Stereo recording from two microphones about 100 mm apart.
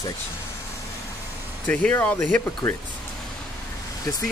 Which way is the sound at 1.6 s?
15° left (ahead or behind).